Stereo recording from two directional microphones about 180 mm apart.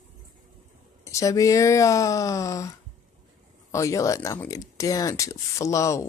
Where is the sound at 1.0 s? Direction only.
15° left (ahead or behind).